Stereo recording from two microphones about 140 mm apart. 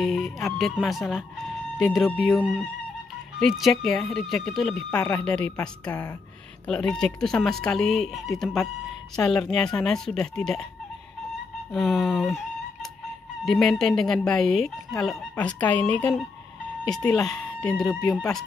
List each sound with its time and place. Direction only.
0.0 s speech: centre (ahead or behind)
4.9 s speech: 20° left (ahead or behind)
5.2 s speech: 5° left (ahead or behind)
11.7 s speech: centre (ahead or behind)